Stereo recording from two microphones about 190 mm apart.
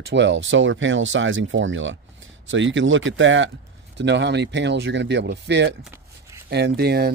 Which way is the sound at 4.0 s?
65° right (ahead or behind).